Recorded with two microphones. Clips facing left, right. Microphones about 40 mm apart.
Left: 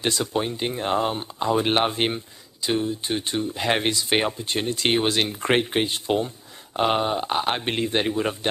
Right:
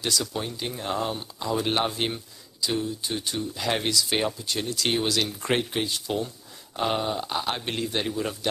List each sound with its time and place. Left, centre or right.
0.0 s speech: left